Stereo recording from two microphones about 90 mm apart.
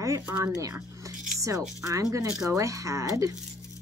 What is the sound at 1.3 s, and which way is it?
Music, 35° right (ahead or behind).